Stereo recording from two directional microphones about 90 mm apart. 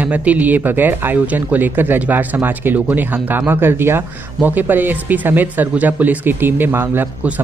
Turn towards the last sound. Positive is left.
turn(degrees=-20)  # may be behind; listen again after turning